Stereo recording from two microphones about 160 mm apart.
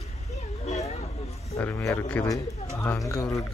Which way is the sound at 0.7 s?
45° left (ahead or behind).